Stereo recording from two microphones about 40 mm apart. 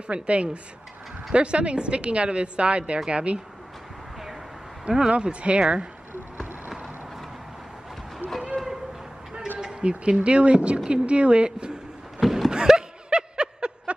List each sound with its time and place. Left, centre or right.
0.1 s a woman's voice: right
4.8 s speech: centre
5.1 s a woman's voice: right
8.2 s a sound: left
9.8 s a woman's voice: right
12.2 s a sound: centre
12.4 s snicker: centre